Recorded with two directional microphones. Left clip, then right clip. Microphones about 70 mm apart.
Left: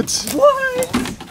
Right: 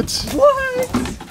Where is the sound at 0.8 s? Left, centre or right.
Left.